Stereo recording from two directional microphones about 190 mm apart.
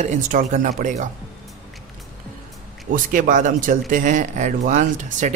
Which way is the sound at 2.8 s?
45° right (ahead or behind).